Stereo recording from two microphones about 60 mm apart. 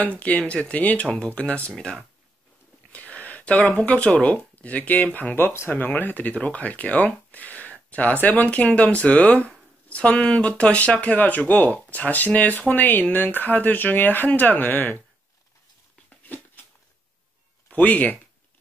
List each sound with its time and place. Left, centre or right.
0.0 s speech: left
2.9 s speech: left
9.8 s a sound: left
10.2 s speech: left
17.6 s speech: left